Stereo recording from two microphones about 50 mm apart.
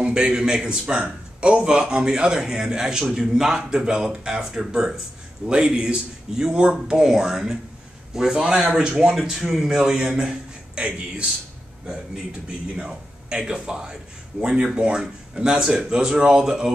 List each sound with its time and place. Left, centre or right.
0.0 s a man's voice: centre
9.2 s a man's voice: centre